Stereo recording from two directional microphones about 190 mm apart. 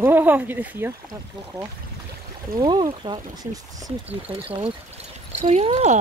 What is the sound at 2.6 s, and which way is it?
Speech, 20° right (ahead or behind).